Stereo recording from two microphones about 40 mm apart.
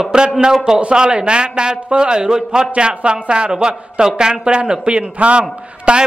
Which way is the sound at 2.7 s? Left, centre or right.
Right.